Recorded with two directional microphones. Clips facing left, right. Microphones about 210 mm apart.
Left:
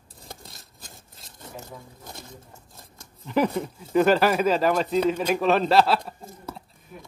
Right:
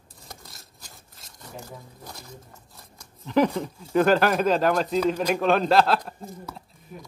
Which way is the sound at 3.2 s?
5° left (ahead or behind).